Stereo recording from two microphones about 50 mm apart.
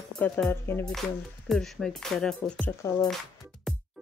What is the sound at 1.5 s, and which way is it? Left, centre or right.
Speech, centre.